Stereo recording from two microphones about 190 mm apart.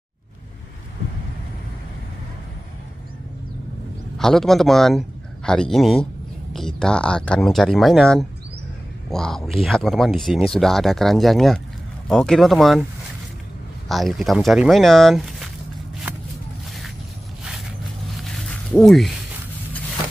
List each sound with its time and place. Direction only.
4.2 s a man's voice: centre (ahead or behind)
13.8 s speech: centre (ahead or behind)
18.1 s a sound: centre (ahead or behind)